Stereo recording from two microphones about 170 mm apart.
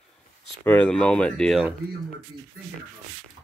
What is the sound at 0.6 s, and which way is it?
Speech, 10° left (ahead or behind).